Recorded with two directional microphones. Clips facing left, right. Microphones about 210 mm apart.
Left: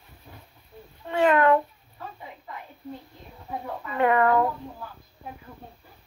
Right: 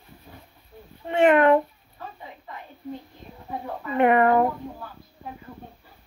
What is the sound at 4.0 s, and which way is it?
Speech, 20° right (ahead or behind).